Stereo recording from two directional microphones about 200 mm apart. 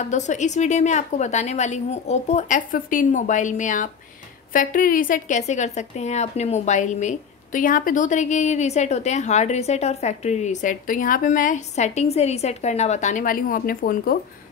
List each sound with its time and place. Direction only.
0.0 s a woman's voice: 35° left (ahead or behind)